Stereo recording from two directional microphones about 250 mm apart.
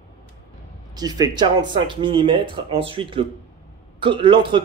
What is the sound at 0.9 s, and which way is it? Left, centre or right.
A man's voice, centre.